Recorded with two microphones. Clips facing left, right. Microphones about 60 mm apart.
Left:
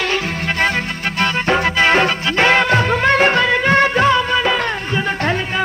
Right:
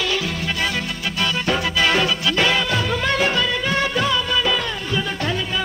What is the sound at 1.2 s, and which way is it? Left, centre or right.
Music, left.